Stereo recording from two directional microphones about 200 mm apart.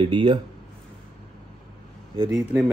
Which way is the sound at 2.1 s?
25° right (ahead or behind).